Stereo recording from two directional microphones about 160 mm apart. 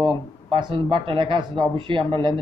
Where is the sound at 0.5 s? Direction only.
35° right (ahead or behind).